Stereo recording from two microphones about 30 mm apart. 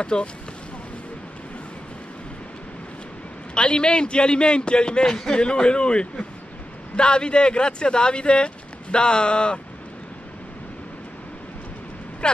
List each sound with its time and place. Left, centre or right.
0.0 s a man's voice: left
3.5 s a man's voice: left